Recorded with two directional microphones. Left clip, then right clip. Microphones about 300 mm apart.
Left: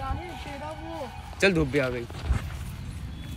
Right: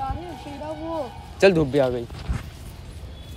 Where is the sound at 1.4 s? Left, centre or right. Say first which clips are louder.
Right 6 dB; centre.